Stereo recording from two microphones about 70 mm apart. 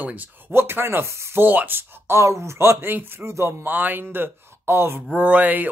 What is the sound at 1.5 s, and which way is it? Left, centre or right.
Speech, right.